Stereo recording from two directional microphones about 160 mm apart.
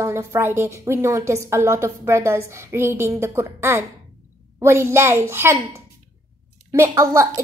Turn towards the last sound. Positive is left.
turn(degrees=-20)  # may be behind; listen again after turning